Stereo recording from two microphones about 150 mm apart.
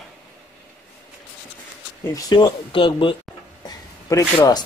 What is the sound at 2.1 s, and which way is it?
Speech, 30° left (ahead or behind).